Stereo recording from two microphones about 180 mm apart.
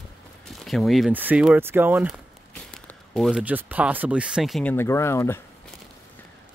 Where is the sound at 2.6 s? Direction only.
5° left (ahead or behind).